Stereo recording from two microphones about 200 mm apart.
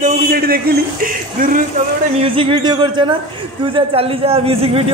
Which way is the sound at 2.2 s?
25° right (ahead or behind).